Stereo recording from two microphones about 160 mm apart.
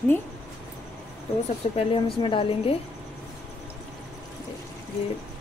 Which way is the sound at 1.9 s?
35° left (ahead or behind).